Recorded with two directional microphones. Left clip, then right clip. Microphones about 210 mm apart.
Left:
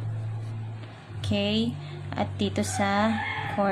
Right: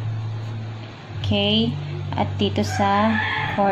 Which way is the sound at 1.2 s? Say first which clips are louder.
Right 7 dB; 15° left (ahead or behind).